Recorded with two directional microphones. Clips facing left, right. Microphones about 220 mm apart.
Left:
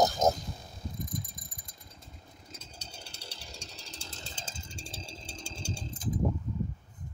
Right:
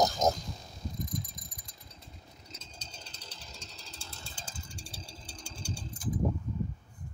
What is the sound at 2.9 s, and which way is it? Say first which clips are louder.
Chainsaw: left 4 dB; 65° left (ahead or behind).